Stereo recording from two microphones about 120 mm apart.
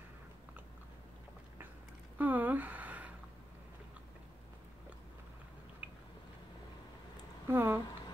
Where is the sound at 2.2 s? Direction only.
15° right (ahead or behind).